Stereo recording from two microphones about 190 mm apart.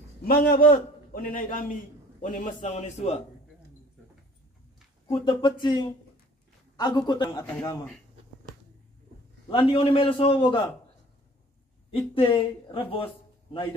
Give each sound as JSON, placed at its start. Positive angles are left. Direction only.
{"t": 0.2, "sound": "a man's voice", "side_deg": 50}
{"t": 5.0, "sound": "a man's voice", "side_deg": 25}
{"t": 9.5, "sound": "a man's voice", "side_deg": 25}
{"t": 11.9, "sound": "a man's voice", "side_deg": 30}